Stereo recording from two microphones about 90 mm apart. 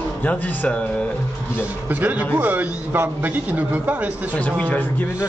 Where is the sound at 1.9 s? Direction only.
20° right (ahead or behind).